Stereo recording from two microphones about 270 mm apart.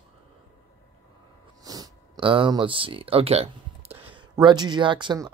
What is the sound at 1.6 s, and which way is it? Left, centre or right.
Speech, centre.